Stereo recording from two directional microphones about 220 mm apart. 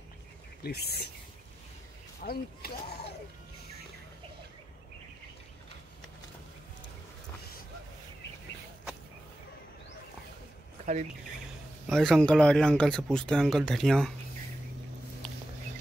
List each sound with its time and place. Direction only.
0.6 s speech: 45° left (ahead or behind)
2.2 s speech: 45° left (ahead or behind)
11.9 s speech: 5° left (ahead or behind)